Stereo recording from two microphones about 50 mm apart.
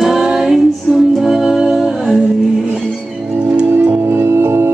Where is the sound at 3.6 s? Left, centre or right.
Right.